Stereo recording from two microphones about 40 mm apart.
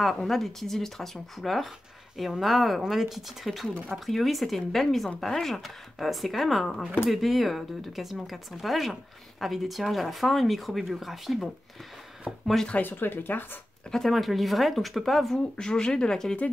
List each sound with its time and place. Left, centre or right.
0.0 s speech: centre
12.8 s speech: left
13.9 s speech: centre
15.5 s speech: centre